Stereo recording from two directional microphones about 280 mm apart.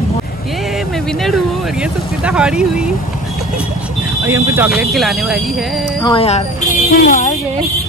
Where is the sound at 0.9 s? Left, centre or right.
Centre.